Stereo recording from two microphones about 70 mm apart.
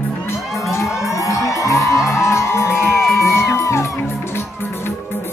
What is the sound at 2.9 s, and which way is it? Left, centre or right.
Music, centre.